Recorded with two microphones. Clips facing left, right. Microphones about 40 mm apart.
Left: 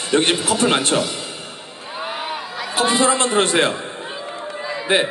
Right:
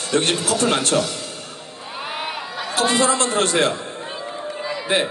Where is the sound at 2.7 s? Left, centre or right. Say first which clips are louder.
Left 1 dB; left.